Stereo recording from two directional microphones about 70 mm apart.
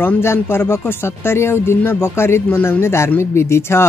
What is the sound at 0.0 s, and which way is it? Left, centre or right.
Speech, left.